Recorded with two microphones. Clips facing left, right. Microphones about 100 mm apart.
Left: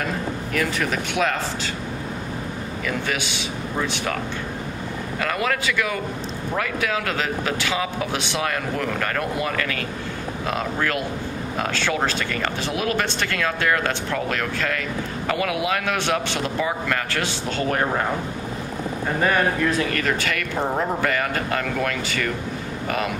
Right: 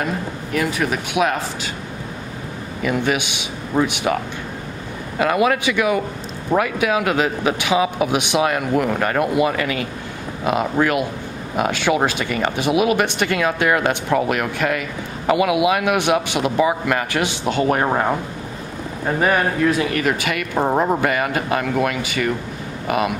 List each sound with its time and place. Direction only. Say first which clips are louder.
0.5 s speech: right 4 dB; 15° right (ahead or behind)
2.8 s speech: right 7 dB; 20° right (ahead or behind)
5.2 s speech: right 7 dB; 20° right (ahead or behind)
19.2 s speech: right 3 dB; 15° right (ahead or behind)